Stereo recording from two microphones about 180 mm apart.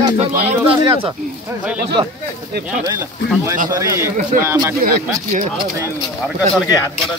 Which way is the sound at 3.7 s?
15° right (ahead or behind).